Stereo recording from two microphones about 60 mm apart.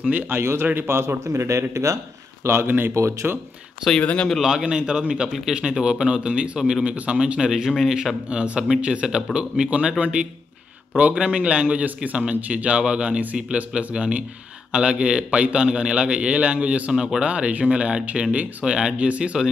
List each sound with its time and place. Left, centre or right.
0.0 s a man's voice: right
0.4 s a man's voice: right
1.2 s a man's voice: right
2.4 s a man's voice: right
4.0 s speech: left
4.4 s a man's voice: centre
5.3 s speech: centre
5.6 s a man's voice: centre
16.9 s a man's voice: centre